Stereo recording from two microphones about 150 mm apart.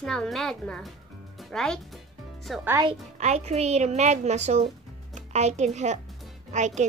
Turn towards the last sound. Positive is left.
turn(degrees=-50)  # may be behind; listen again after turning